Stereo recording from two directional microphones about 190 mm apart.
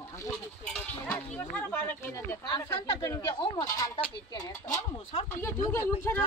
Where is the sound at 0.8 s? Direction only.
5° left (ahead or behind).